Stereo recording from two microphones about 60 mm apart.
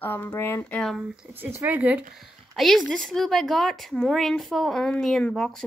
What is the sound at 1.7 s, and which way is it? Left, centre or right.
Speech, right.